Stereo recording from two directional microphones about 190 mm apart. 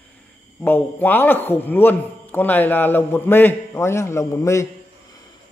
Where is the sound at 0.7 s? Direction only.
10° left (ahead or behind).